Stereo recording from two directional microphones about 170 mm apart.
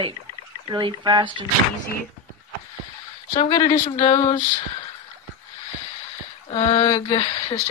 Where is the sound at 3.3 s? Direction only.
40° left (ahead or behind).